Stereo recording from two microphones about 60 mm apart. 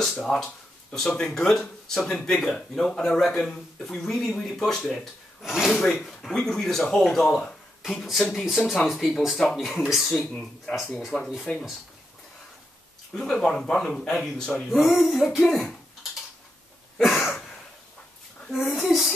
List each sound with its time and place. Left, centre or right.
0.0 s speech: centre
5.4 s speech: centre
5.7 s speech: centre
8.0 s speech: centre
13.1 s speech: centre
14.8 s speech: centre
17.0 s a sound: centre
17.3 s a sound: centre
18.5 s speech: centre